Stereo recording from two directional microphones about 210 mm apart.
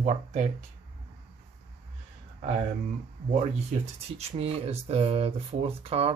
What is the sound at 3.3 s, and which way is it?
Speech, 30° right (ahead or behind).